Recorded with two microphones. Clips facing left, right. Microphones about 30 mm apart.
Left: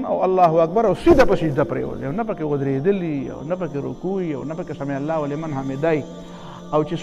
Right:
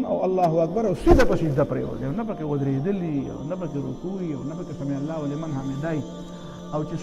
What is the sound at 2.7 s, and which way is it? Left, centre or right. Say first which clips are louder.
Speech: left 5 dB; left.